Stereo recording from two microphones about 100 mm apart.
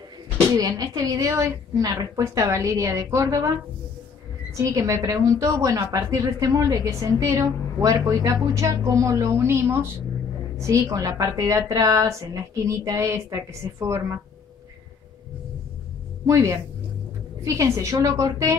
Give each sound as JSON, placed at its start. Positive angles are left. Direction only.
{"t": 0.5, "sound": "a woman's voice", "side_deg": -40}
{"t": 4.6, "sound": "a woman's voice", "side_deg": -30}
{"t": 16.3, "sound": "a woman's voice", "side_deg": -30}